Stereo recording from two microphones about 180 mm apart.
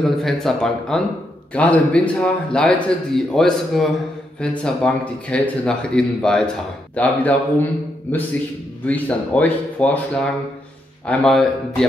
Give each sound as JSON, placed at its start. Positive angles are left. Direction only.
{"t": 0.0, "sound": "a man's voice", "side_deg": 0}
{"t": 8.8, "sound": "a man's voice", "side_deg": 10}